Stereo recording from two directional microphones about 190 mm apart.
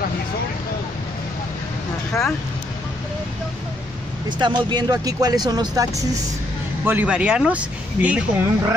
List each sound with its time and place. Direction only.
4.4 s speech: 25° right (ahead or behind)
6.8 s speech: 10° right (ahead or behind)